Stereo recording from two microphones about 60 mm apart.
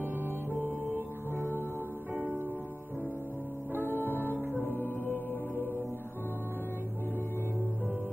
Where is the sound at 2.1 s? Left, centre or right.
Right.